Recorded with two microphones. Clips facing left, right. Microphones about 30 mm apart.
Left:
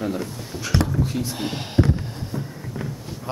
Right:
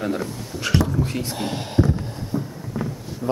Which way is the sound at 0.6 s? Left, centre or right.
Right.